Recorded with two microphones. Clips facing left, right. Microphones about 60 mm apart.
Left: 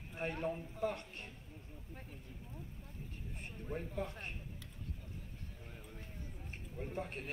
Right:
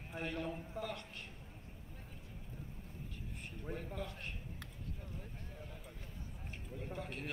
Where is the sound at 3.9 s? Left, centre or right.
Left.